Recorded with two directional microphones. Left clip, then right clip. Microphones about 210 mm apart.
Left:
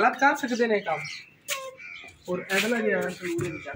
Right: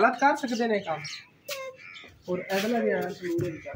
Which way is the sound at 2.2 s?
20° right (ahead or behind).